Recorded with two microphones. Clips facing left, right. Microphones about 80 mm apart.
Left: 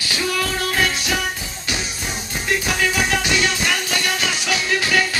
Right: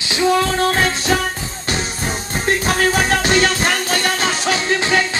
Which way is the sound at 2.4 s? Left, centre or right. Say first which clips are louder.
Right 4 dB; right.